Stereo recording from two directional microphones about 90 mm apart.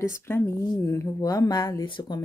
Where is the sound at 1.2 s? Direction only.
45° left (ahead or behind).